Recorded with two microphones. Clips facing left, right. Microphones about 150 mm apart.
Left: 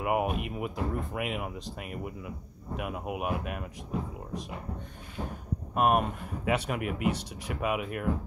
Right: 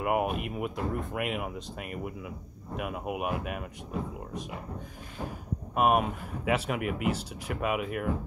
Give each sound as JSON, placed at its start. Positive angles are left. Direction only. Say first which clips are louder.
{"t": 0.0, "sound": "speech", "louder": "even", "side_deg": 0}
{"t": 5.8, "sound": "speech", "louder": "right 1 dB", "side_deg": 0}